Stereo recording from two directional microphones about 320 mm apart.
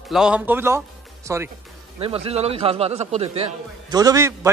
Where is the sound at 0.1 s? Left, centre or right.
Centre.